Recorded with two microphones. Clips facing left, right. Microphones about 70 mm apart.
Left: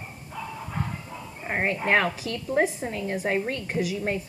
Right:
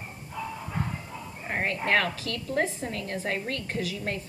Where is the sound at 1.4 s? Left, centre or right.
Centre.